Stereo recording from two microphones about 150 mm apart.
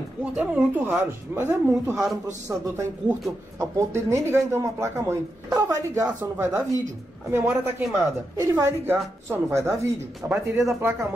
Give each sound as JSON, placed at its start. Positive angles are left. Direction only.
{"t": 0.2, "sound": "speech", "side_deg": -10}